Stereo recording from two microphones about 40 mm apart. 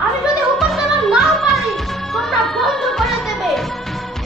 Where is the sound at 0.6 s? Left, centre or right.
Centre.